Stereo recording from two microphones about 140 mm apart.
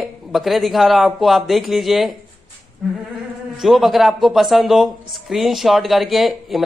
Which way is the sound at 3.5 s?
Centre (ahead or behind).